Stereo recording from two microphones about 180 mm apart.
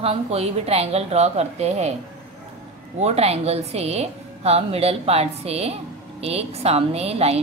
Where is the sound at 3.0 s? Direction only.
35° right (ahead or behind).